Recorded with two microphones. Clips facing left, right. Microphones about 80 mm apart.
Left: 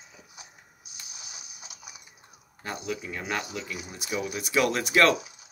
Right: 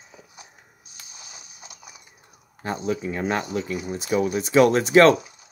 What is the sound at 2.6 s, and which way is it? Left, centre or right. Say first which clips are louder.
Speech: right 7 dB; right.